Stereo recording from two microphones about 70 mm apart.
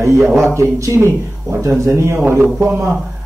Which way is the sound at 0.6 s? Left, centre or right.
Right.